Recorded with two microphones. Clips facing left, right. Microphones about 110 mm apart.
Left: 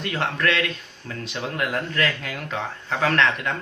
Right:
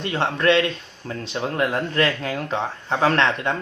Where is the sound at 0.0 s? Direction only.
25° right (ahead or behind).